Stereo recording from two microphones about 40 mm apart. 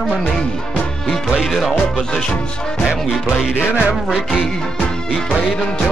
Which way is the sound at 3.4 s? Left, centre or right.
Centre.